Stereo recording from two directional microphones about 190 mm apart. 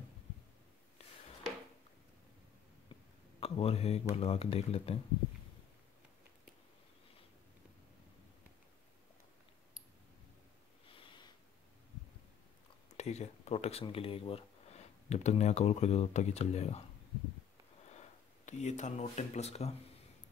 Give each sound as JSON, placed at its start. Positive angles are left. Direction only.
{"t": 3.3, "sound": "speech", "side_deg": 30}
{"t": 10.9, "sound": "sniff", "side_deg": 25}
{"t": 12.9, "sound": "speech", "side_deg": 35}
{"t": 17.9, "sound": "speech", "side_deg": 40}